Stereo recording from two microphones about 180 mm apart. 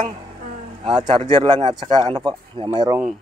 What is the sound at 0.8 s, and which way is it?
Speech, 25° right (ahead or behind).